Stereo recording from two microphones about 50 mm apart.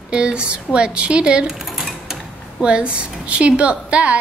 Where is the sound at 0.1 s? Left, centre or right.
Centre.